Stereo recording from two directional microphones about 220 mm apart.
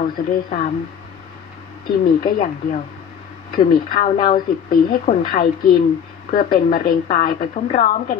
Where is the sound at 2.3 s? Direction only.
40° left (ahead or behind).